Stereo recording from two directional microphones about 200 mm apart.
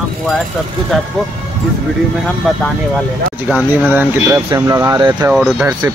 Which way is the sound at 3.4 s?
10° right (ahead or behind).